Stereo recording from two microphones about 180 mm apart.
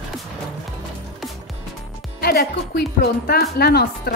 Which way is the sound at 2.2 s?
60° left (ahead or behind).